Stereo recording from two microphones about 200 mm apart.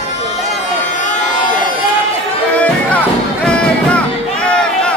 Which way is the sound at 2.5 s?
5° left (ahead or behind).